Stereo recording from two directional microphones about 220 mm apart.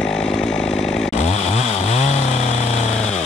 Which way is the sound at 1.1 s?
30° left (ahead or behind).